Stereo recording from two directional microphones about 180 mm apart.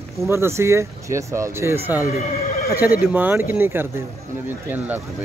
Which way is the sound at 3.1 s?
10° right (ahead or behind).